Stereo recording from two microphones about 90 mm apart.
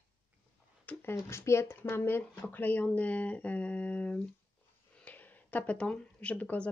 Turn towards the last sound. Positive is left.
turn(degrees=15)  # may be behind; listen again after turning